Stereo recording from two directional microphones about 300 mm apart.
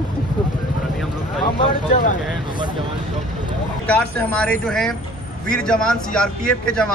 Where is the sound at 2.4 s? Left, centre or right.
Centre.